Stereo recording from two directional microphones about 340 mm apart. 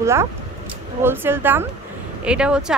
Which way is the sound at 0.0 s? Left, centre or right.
Centre.